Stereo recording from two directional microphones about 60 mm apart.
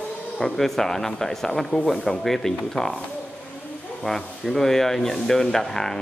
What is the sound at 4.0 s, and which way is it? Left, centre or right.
A man's voice, centre.